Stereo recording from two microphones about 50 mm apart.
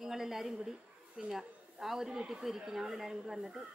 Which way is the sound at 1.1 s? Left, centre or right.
Centre.